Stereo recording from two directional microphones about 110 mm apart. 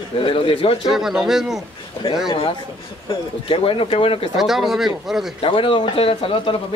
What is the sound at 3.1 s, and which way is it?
Speech, 55° left (ahead or behind).